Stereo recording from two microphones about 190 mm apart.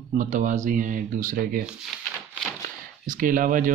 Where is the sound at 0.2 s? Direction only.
40° right (ahead or behind).